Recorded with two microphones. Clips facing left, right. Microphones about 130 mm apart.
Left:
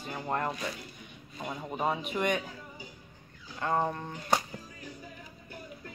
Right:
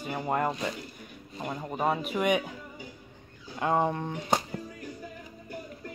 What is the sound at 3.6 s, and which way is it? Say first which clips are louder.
Speech: right 3 dB; 15° right (ahead or behind).